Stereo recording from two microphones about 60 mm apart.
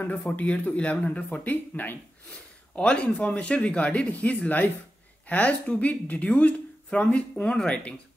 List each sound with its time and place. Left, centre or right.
0.4 s speech: left
2.7 s speech: centre